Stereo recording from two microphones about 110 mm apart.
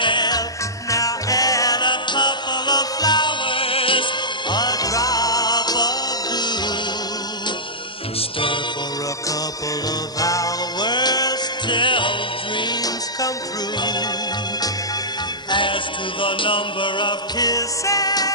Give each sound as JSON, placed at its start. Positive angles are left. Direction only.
{"t": 0.0, "sound": "music", "side_deg": 45}
{"t": 0.8, "sound": "music", "side_deg": 30}
{"t": 4.5, "sound": "music", "side_deg": 40}
{"t": 10.2, "sound": "music", "side_deg": 30}
{"t": 15.5, "sound": "music", "side_deg": 50}